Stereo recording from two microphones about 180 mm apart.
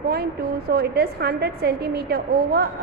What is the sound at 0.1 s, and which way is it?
A woman's voice, 60° right (ahead or behind).